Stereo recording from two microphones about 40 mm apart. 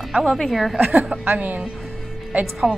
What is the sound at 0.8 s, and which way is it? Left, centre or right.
Speech, right.